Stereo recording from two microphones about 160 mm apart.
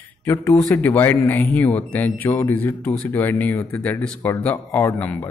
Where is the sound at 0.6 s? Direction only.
15° left (ahead or behind).